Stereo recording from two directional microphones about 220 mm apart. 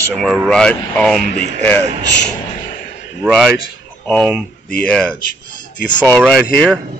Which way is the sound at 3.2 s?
Centre (ahead or behind).